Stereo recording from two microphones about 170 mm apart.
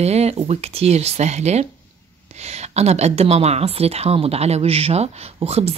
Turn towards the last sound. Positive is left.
turn(degrees=-35)  # may be behind; listen again after turning